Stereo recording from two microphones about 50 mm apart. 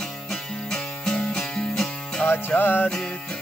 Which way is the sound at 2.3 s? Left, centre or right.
Left.